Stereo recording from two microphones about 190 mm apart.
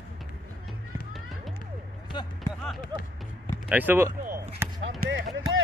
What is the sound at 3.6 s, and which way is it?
Speech, 10° right (ahead or behind).